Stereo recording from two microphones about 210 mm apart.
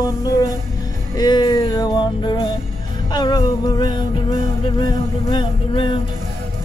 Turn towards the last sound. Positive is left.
turn(degrees=20)  # may be behind; listen again after turning